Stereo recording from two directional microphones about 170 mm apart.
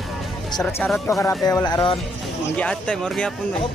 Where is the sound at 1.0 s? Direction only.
15° left (ahead or behind).